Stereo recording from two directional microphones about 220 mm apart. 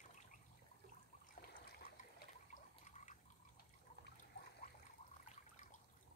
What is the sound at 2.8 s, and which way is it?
Water, 35° left (ahead or behind).